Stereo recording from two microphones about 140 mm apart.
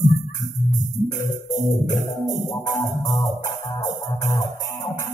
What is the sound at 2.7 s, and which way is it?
Music, 15° left (ahead or behind).